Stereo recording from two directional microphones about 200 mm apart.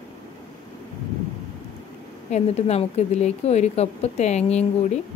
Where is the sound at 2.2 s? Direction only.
35° left (ahead or behind).